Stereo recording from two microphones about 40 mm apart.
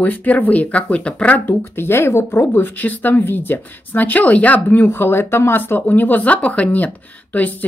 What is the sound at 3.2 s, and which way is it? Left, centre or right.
Speech, left.